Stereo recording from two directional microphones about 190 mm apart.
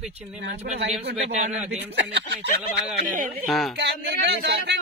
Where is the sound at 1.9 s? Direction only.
70° right (ahead or behind).